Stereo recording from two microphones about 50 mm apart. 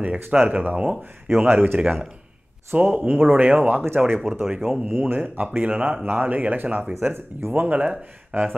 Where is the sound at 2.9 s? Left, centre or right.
Right.